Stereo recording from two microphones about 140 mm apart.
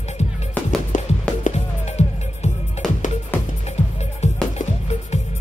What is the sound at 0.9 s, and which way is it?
Music, 65° left (ahead or behind).